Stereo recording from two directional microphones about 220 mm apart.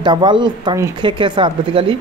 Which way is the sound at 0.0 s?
20° right (ahead or behind).